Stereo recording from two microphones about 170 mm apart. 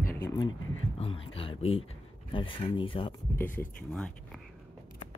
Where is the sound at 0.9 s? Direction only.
30° left (ahead or behind).